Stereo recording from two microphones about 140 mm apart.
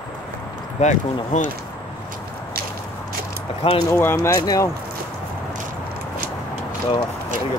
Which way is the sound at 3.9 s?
15° left (ahead or behind).